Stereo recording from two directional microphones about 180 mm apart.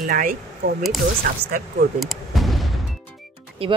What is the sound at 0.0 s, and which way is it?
Speech, 50° right (ahead or behind).